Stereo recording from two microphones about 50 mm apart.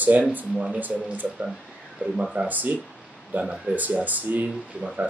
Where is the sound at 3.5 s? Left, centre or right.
Right.